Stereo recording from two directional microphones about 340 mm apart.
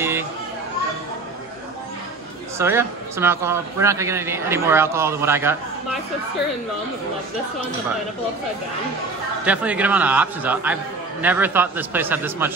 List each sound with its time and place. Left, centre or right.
0.0 s children playing: centre
2.6 s a man's voice: centre
9.4 s a man's voice: centre